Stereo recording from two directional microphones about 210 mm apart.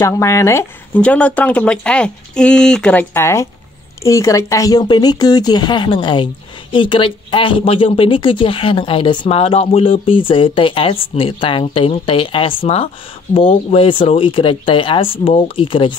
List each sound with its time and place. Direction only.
0.0 s speech: 15° left (ahead or behind)